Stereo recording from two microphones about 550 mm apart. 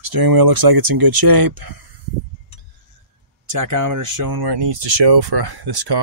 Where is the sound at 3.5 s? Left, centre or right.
Right.